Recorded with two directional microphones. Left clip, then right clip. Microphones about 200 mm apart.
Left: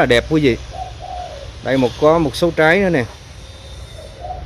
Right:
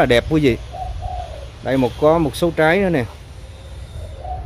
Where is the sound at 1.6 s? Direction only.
Centre (ahead or behind).